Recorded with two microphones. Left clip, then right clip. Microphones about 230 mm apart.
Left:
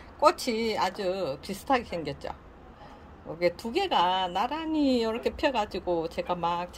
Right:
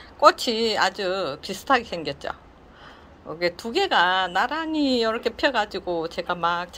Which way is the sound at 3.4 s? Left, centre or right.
Centre.